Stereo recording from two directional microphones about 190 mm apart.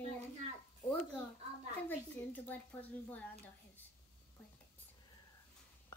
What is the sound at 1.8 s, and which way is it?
A child's voice, 10° left (ahead or behind).